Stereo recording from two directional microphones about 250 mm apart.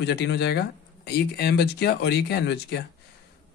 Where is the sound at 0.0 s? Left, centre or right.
Left.